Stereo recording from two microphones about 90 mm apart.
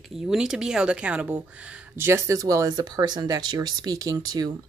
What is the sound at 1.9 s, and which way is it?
Speech, 30° right (ahead or behind).